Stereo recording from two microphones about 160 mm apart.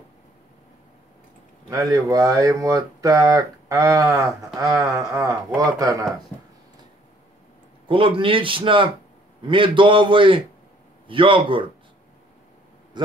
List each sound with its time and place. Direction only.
1.7 s speech: 20° right (ahead or behind)
7.9 s speech: 35° right (ahead or behind)
12.9 s speech: 30° right (ahead or behind)